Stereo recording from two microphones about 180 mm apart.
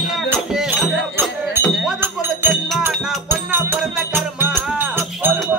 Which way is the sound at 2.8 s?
10° right (ahead or behind).